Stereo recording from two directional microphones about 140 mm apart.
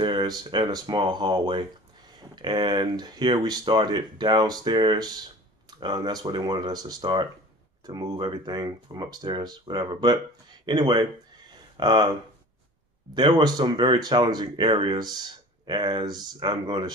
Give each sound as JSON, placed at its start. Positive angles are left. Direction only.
{"t": 0.0, "sound": "speech", "side_deg": -35}
{"t": 13.1, "sound": "speech", "side_deg": -30}